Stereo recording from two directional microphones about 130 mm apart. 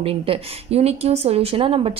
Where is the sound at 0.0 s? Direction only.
45° right (ahead or behind).